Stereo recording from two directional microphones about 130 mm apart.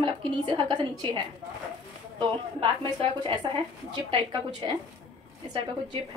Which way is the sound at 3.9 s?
35° right (ahead or behind).